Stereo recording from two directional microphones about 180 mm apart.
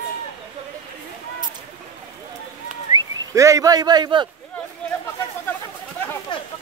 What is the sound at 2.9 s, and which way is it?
Speech, 15° right (ahead or behind).